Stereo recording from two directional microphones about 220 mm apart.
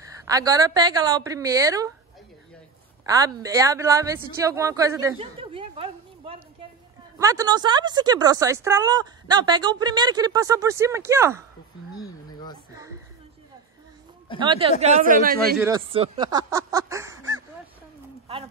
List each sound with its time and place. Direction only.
0.2 s speech: 15° right (ahead or behind)
3.1 s speech: 15° right (ahead or behind)
5.2 s a sound: 25° right (ahead or behind)
7.2 s speech: 15° right (ahead or behind)
12.0 s a sound: 20° left (ahead or behind)
14.4 s speech: 25° right (ahead or behind)